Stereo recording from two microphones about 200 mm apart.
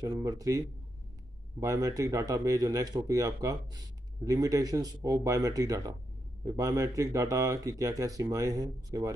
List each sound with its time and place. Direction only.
0.0 s speech: 15° right (ahead or behind)